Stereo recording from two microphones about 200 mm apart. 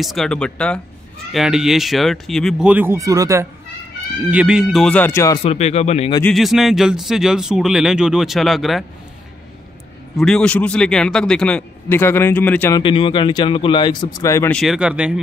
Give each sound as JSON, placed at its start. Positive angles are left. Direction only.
{"t": 0.0, "sound": "a man's voice", "side_deg": 0}
{"t": 4.3, "sound": "a man's voice", "side_deg": -5}
{"t": 5.4, "sound": "speech", "side_deg": 30}
{"t": 6.3, "sound": "a man's voice", "side_deg": 0}
{"t": 10.1, "sound": "a man's voice", "side_deg": 5}
{"t": 12.8, "sound": "speech", "side_deg": 25}
{"t": 14.5, "sound": "a man's voice", "side_deg": 0}